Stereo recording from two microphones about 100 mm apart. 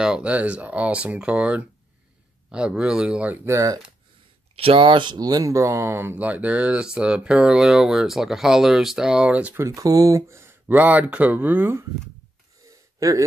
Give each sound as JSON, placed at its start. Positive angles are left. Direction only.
{"t": 0.0, "sound": "speech", "side_deg": -10}
{"t": 3.4, "sound": "speech", "side_deg": -30}
{"t": 4.6, "sound": "speech", "side_deg": -65}
{"t": 9.6, "sound": "speech", "side_deg": -35}
{"t": 12.6, "sound": "gasp", "side_deg": -35}